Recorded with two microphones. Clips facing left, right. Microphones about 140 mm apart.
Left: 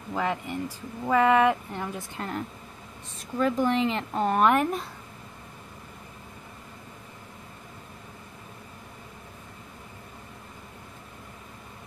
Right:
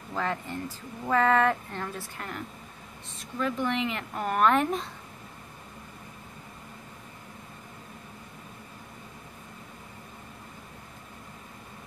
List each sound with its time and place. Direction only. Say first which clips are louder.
0.1 s speech: left 3 dB; 15° left (ahead or behind)
3.3 s speech: left 5 dB; 40° left (ahead or behind); by 4.6 s 20° left (ahead or behind)